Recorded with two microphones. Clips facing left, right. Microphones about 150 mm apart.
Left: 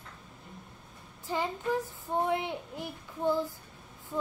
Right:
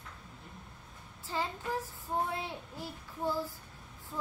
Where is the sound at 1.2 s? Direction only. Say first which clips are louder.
Left 4 dB; 15° left (ahead or behind).